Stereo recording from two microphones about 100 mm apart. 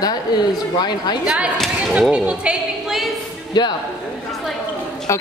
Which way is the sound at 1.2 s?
10° right (ahead or behind).